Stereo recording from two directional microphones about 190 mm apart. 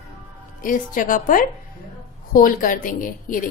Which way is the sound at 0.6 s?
45° left (ahead or behind).